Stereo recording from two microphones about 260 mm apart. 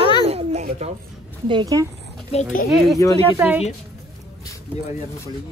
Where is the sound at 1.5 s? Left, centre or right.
Centre.